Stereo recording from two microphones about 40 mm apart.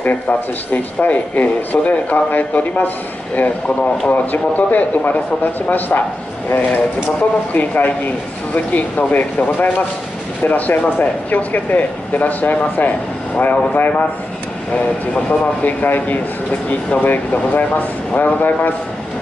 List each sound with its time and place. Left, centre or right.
0.0 s speech: left
7.5 s speech: left
15.6 s speech: left